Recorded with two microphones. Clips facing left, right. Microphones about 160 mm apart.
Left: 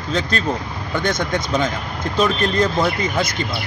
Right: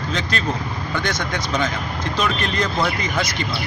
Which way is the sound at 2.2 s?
30° left (ahead or behind).